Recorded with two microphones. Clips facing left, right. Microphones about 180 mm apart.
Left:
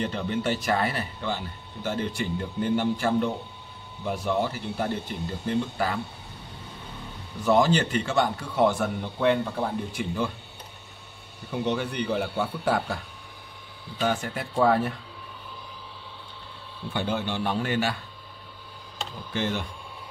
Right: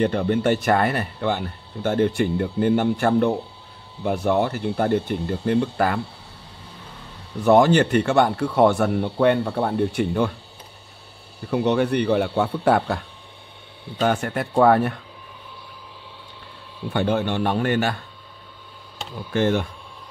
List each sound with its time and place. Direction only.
0.0 s speech: 55° right (ahead or behind)
7.4 s speech: 60° right (ahead or behind)
11.5 s speech: 65° right (ahead or behind)
14.0 s speech: 60° right (ahead or behind)
16.9 s speech: 55° right (ahead or behind)
19.3 s speech: 55° right (ahead or behind)